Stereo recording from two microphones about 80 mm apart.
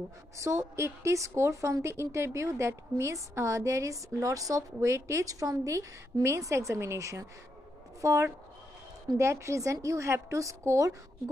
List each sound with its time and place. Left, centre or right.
0.4 s a woman's voice: right